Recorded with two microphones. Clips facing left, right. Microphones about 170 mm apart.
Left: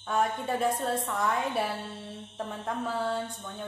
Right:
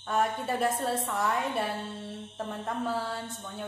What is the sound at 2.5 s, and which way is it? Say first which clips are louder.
Mantra: right 1 dB; centre (ahead or behind).